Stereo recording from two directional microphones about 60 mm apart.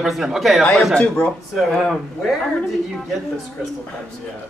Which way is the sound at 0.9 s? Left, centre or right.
Centre.